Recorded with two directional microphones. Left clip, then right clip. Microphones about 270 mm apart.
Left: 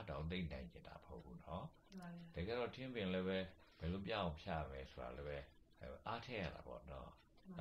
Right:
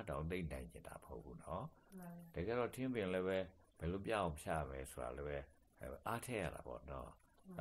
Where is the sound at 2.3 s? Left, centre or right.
Right.